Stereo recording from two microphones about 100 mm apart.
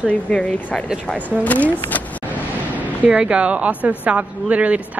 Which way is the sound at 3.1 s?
10° right (ahead or behind).